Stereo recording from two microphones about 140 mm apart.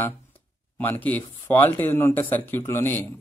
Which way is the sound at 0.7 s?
15° left (ahead or behind).